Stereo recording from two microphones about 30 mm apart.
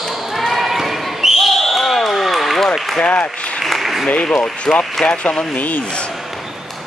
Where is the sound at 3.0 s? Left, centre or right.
Left.